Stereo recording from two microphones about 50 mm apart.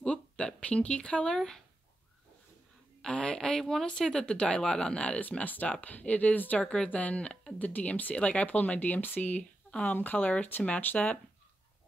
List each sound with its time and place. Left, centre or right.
0.0 s speech: centre
3.0 s speech: centre; by 6.6 s left
6.6 s speech: centre; by 11.1 s left